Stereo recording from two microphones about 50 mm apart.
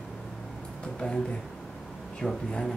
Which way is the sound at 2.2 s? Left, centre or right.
Centre.